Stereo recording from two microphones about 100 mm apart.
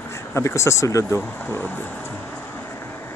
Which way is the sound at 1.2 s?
20° left (ahead or behind).